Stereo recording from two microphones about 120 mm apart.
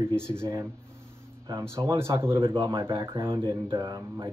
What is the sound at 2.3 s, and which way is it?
Speech, 45° right (ahead or behind).